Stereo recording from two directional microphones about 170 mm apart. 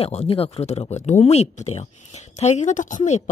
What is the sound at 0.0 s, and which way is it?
Speech, 35° left (ahead or behind).